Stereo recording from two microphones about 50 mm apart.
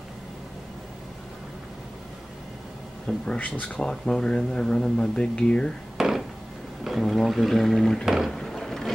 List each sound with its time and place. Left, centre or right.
3.3 s speech: left
3.8 s speech: centre
5.9 s a sound: centre
7.0 s speech: centre
8.0 s speech: centre
8.3 s a sound: centre